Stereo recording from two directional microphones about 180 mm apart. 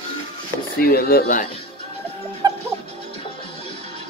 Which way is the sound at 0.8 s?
55° left (ahead or behind).